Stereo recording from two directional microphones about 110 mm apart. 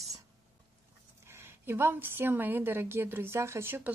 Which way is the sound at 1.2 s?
20° right (ahead or behind).